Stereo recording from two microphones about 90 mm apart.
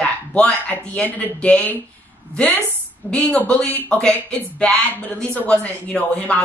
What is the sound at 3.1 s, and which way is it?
Speech, 10° left (ahead or behind).